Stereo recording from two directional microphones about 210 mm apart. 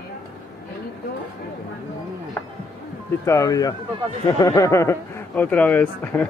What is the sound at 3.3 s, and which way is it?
Speech, 15° left (ahead or behind).